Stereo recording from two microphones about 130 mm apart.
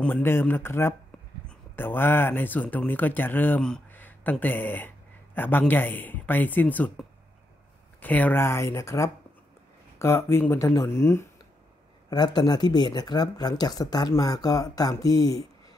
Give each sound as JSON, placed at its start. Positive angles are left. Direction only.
{"t": 0.0, "sound": "speech", "side_deg": 15}
{"t": 8.0, "sound": "speech", "side_deg": 15}
{"t": 12.1, "sound": "speech", "side_deg": 30}